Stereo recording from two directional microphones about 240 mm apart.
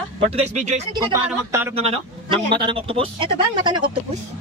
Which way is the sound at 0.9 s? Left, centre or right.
Centre.